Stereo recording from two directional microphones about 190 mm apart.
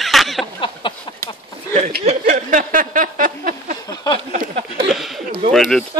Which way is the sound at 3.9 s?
20° left (ahead or behind).